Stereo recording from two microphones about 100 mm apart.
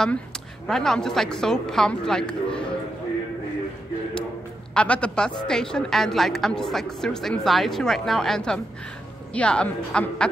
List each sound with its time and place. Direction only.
0.7 s a woman's voice: 5° left (ahead or behind)
4.7 s a woman's voice: 10° left (ahead or behind)